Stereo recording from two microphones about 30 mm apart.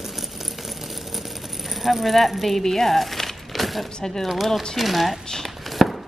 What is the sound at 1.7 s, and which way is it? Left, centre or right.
Speech, centre.